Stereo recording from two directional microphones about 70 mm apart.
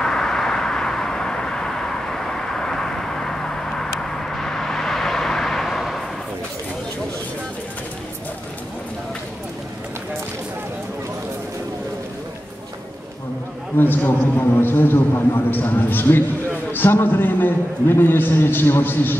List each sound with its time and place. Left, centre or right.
0.0 s vehicle: centre
13.7 s a man's voice: left